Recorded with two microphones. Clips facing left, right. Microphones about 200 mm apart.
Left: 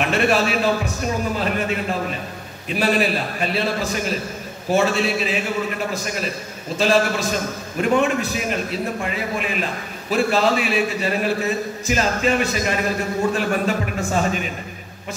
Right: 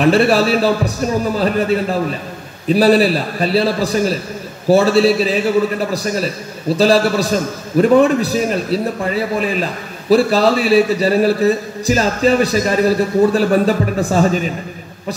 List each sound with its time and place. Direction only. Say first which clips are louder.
0.0 s a man's voice: right 7 dB; 35° right (ahead or behind)